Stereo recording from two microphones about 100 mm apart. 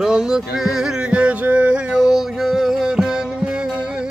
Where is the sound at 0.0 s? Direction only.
5° right (ahead or behind).